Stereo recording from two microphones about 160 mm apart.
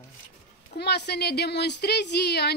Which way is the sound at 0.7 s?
90° left.